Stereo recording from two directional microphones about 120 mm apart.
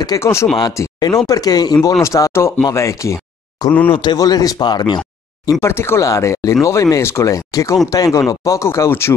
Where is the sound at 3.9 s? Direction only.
35° left (ahead or behind).